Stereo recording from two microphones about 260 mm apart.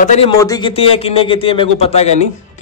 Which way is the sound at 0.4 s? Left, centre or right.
Centre.